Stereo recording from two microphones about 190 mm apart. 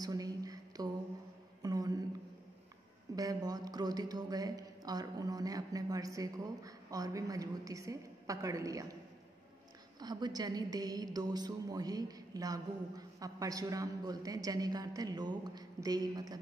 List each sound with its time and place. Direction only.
0.0 s a sound: 20° right (ahead or behind)
3.2 s speech: 20° right (ahead or behind)
9.9 s a woman's voice: 20° right (ahead or behind)